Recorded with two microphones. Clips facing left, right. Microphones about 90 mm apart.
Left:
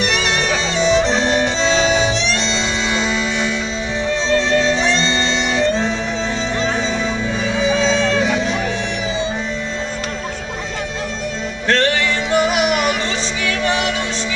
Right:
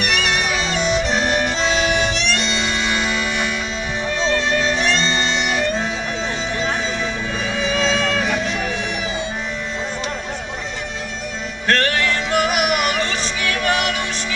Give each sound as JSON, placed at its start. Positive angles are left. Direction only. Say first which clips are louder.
{"t": 0.0, "sound": "music", "louder": "left 2 dB", "side_deg": -5}
{"t": 7.4, "sound": "music", "louder": "left 4 dB", "side_deg": 0}
{"t": 11.6, "sound": "music", "louder": "left 2 dB", "side_deg": 0}